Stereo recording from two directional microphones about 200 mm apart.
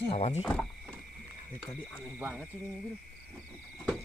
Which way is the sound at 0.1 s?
30° left (ahead or behind).